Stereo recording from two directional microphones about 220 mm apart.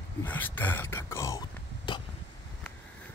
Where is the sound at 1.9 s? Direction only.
20° left (ahead or behind).